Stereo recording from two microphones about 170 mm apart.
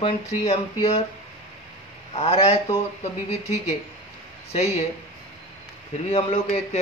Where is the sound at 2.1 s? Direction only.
40° left (ahead or behind).